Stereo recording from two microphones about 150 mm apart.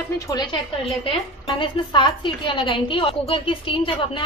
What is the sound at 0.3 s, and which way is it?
A woman's voice, 30° left (ahead or behind).